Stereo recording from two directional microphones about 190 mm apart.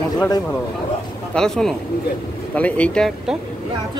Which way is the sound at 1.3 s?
5° left (ahead or behind).